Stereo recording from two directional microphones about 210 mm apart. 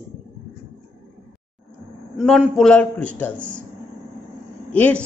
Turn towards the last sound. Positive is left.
turn(degrees=5)  # may be behind; listen again after turning